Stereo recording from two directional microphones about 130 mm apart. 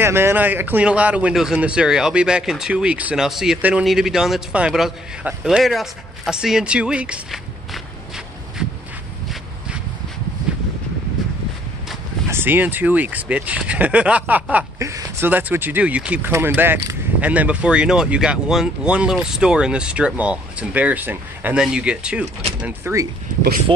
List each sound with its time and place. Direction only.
0.0 s speech: 20° right (ahead or behind)
8.6 s a sound: 5° right (ahead or behind)
12.3 s speech: 15° right (ahead or behind)
14.8 s speech: 25° right (ahead or behind)